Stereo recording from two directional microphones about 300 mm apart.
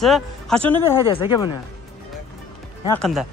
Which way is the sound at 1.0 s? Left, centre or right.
Centre.